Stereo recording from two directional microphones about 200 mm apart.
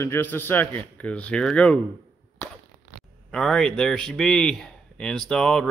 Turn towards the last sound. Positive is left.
turn(degrees=5)  # may be behind; listen again after turning